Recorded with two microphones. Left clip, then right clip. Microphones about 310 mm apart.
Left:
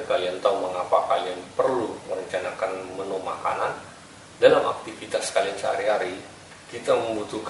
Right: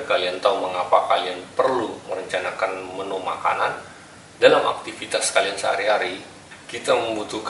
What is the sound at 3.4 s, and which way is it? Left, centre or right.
Speech, centre.